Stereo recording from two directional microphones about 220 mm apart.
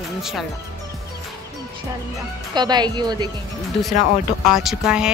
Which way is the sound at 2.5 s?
20° right (ahead or behind).